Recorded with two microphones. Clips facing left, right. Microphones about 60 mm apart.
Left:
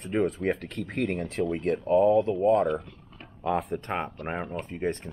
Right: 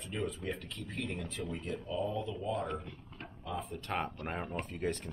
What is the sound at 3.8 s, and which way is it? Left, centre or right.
Speech, left.